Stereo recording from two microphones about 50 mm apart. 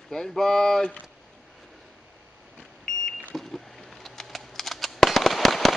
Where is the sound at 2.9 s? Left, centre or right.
Centre.